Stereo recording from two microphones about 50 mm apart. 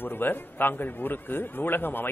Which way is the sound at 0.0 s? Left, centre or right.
Left.